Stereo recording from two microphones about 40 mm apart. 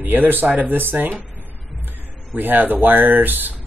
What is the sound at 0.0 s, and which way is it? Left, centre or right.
Speech, right.